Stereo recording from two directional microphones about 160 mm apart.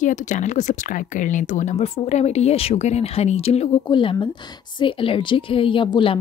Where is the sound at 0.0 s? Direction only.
50° left (ahead or behind).